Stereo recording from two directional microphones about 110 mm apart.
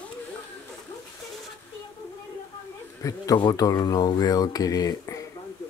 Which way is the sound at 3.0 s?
30° left (ahead or behind).